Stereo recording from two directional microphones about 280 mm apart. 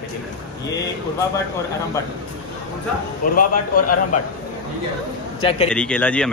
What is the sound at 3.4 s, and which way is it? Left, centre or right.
Speech, left.